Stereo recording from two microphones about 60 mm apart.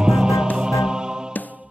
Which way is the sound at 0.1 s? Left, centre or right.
Centre.